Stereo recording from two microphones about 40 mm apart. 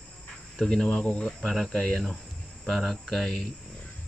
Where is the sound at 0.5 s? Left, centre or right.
Left.